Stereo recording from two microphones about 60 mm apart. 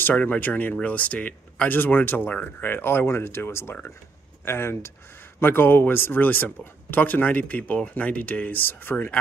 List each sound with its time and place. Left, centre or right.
0.1 s speech: left